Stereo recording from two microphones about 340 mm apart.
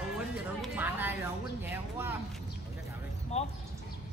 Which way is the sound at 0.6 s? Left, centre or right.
Centre.